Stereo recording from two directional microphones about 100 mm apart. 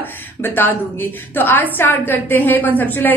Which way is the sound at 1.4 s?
20° left (ahead or behind).